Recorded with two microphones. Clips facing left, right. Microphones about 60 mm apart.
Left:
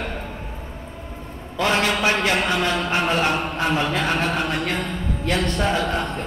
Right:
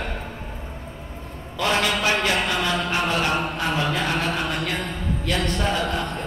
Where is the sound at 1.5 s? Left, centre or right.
Left.